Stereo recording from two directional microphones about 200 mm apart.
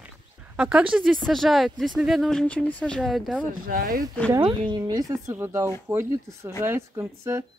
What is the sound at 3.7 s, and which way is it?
Speech, 45° right (ahead or behind).